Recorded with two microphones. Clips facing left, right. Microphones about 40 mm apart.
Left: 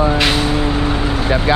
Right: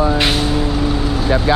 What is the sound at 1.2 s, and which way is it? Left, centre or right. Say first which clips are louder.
Speech: right 1 dB; left.